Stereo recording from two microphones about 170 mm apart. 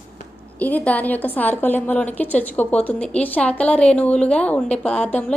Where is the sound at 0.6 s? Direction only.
10° left (ahead or behind).